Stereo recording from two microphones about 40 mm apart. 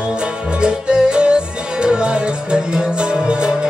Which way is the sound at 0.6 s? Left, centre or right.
Right.